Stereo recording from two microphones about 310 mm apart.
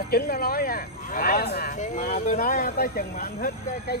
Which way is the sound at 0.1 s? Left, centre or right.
Left.